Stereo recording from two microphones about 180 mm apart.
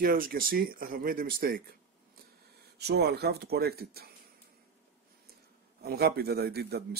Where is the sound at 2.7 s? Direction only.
65° right (ahead or behind).